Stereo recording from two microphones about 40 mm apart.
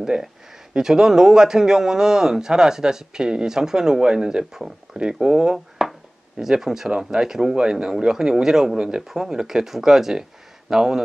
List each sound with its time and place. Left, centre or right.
0.0 s a man's voice: centre
6.9 s a man's voice: right
9.0 s a man's voice: centre